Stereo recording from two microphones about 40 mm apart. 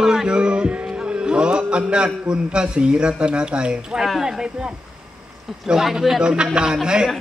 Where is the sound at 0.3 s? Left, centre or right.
Right.